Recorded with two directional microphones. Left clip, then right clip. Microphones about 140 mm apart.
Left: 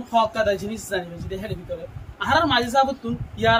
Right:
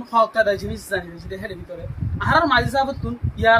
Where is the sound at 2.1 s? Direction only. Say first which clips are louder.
Right 2 dB; 20° left (ahead or behind).